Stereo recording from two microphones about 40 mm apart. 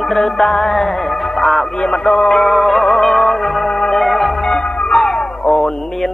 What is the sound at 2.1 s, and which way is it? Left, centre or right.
Music, centre.